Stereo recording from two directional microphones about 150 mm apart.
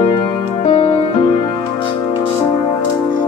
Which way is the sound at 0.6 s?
40° left (ahead or behind).